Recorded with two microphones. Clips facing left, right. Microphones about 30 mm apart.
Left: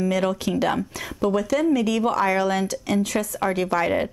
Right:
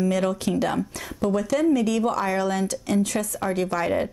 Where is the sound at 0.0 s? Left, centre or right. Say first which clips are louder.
Left 1 dB; centre.